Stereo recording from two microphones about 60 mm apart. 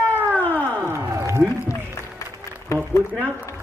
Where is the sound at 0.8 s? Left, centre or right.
Right.